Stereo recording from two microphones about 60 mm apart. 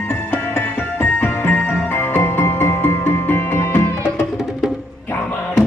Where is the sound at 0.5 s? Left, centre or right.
Left.